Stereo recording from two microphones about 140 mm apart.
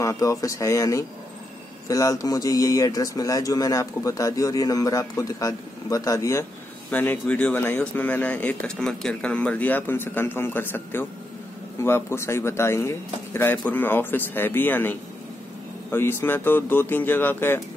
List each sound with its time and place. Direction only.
0.0 s a man's voice: 25° left (ahead or behind)
6.9 s speech: 10° left (ahead or behind)